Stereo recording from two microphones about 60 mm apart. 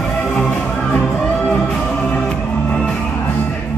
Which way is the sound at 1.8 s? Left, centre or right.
Centre.